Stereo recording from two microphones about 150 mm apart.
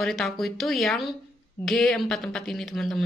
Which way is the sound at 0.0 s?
Centre (ahead or behind).